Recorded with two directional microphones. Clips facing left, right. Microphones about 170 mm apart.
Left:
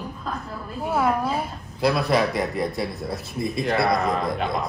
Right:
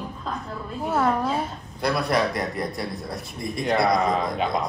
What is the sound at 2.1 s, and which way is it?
Speech, 25° left (ahead or behind).